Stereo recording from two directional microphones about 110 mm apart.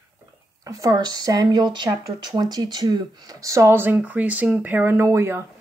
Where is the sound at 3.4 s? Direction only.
25° right (ahead or behind).